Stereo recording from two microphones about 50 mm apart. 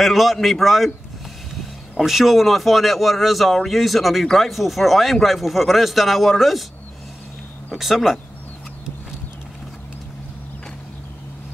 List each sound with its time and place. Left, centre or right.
0.0 s speech: centre
2.0 s speech: centre
7.7 s speech: centre